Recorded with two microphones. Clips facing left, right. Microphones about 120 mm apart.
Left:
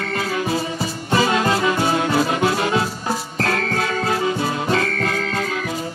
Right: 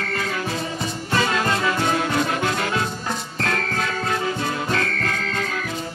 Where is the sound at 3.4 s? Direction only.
5° left (ahead or behind).